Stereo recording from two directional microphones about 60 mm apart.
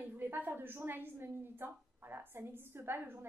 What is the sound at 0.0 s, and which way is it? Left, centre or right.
A woman's voice, right.